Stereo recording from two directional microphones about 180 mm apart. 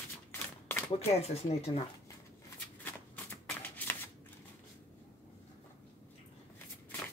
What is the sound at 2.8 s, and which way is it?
Shuffling cards, 10° left (ahead or behind).